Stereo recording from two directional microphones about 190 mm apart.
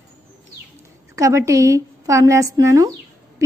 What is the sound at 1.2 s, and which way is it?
A woman's voice, 15° right (ahead or behind).